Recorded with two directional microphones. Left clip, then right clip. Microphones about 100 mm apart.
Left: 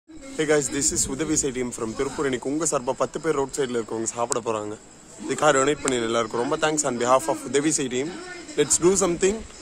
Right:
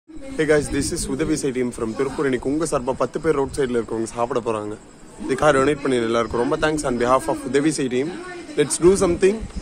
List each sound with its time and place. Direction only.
0.4 s a man's voice: 20° left (ahead or behind)